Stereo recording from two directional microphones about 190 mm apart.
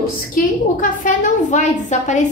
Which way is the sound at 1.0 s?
40° left (ahead or behind).